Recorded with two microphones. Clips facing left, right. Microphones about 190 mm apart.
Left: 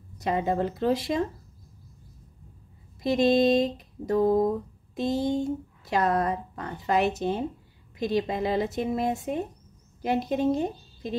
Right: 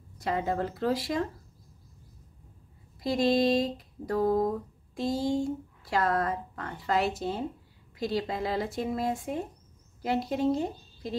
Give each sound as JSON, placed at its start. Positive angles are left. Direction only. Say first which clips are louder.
{"t": 0.2, "sound": "speech", "louder": "left 3 dB", "side_deg": 20}
{"t": 3.0, "sound": "speech", "louder": "left 4 dB", "side_deg": 20}